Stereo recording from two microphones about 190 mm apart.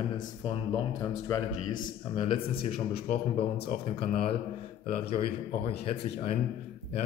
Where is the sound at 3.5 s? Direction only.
50° left (ahead or behind).